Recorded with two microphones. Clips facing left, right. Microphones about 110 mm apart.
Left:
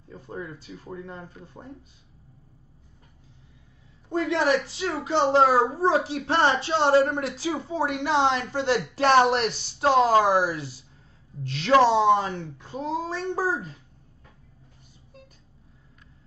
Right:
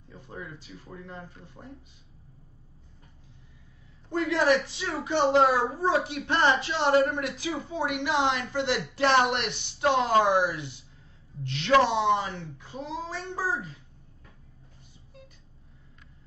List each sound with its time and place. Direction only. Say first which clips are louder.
0.1 s speech: left 5 dB; 45° left (ahead or behind)
4.1 s a woman's voice: left 1 dB; 25° left (ahead or behind)